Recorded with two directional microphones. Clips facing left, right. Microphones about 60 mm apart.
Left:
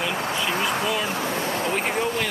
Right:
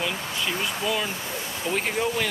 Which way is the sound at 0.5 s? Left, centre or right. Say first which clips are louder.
Left 5 dB; left.